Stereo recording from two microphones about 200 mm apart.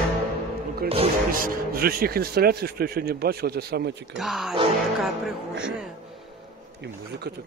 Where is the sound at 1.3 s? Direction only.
45° right (ahead or behind).